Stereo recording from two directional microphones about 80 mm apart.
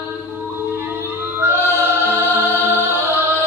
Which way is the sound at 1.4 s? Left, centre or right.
Right.